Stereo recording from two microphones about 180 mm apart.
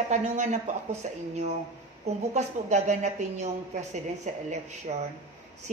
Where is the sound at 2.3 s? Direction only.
40° right (ahead or behind).